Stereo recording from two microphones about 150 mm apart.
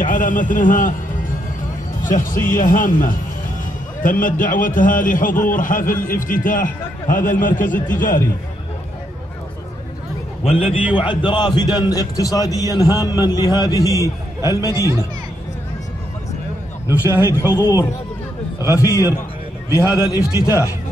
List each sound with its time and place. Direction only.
0.0 s a man's voice: 60° left (ahead or behind)
2.0 s a man's voice: 60° left (ahead or behind)
10.4 s a man's voice: 40° left (ahead or behind); by 14.7 s 20° left (ahead or behind)
14.7 s speech: 20° right (ahead or behind)
16.9 s a man's voice: 15° right (ahead or behind)
17.3 s a man's voice: 20° left (ahead or behind)
20.0 s a man's voice: 25° left (ahead or behind)